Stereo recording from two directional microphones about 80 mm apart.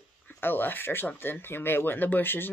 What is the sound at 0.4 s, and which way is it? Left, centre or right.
Speech, left.